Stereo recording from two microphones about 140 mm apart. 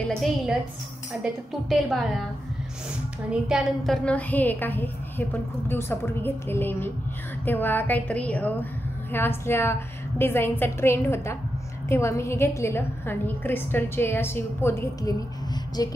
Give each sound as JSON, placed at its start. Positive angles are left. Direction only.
{"t": 0.0, "sound": "a woman's voice", "side_deg": 5}
{"t": 3.3, "sound": "a woman's voice", "side_deg": -5}
{"t": 15.8, "sound": "music", "side_deg": 25}